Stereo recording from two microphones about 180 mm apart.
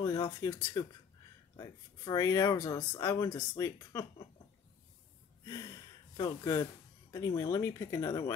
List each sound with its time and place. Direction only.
0.0 s speech: 20° left (ahead or behind)
5.4 s speech: 20° left (ahead or behind)